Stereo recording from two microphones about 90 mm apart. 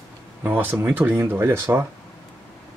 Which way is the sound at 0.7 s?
25° right (ahead or behind).